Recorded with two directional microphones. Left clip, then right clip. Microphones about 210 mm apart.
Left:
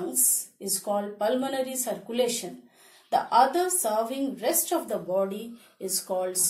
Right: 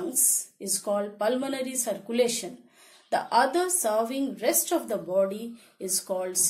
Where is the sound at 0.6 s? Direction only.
35° right (ahead or behind).